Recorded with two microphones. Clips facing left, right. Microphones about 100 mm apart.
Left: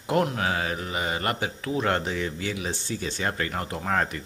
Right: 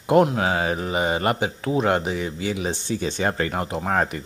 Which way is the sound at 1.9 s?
15° right (ahead or behind).